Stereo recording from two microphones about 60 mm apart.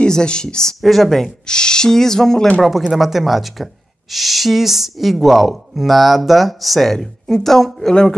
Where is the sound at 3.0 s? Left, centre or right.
Centre.